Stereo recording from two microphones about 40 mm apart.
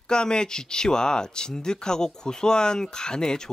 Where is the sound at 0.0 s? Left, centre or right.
Centre.